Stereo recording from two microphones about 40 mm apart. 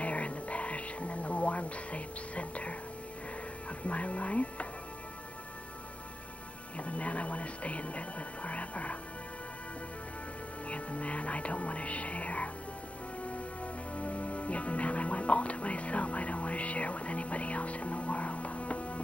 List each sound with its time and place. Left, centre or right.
0.0 s music: left
3.8 s music: left
6.8 s a sound: left
10.7 s music: left